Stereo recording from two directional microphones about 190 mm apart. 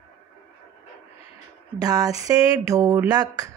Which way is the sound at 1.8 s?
20° right (ahead or behind).